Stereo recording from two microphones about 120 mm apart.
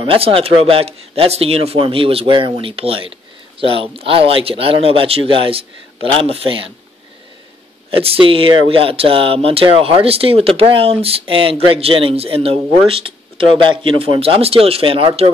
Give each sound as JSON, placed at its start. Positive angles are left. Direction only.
{"t": 0.0, "sound": "speech", "side_deg": -50}
{"t": 7.9, "sound": "speech", "side_deg": -50}